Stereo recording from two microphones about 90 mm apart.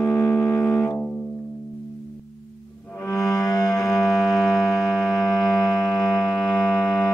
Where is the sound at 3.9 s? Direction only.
Centre (ahead or behind).